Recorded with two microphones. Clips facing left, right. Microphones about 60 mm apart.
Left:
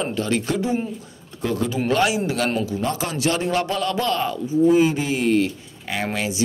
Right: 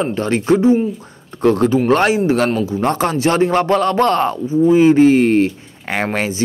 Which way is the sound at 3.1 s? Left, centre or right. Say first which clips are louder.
Right 6 dB; right.